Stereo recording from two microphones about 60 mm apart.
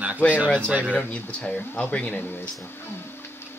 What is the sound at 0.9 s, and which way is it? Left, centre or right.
Speech, centre.